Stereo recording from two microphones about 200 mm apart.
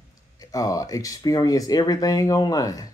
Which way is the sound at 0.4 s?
15° left (ahead or behind).